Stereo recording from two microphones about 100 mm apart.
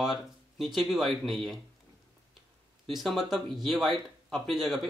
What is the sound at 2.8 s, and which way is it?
Speech, centre (ahead or behind).